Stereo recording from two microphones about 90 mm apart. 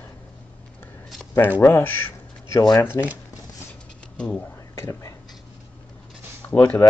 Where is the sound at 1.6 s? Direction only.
25° left (ahead or behind).